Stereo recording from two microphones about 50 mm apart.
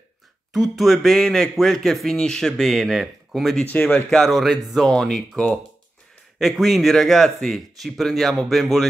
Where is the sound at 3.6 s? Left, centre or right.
Left.